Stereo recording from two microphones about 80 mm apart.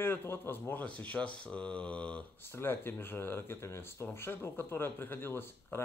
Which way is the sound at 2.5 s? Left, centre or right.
Left.